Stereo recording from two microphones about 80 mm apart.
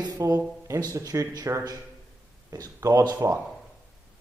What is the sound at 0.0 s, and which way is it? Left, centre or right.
Speech, right.